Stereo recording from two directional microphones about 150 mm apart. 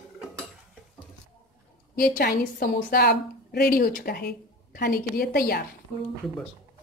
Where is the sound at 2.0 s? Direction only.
75° left (ahead or behind).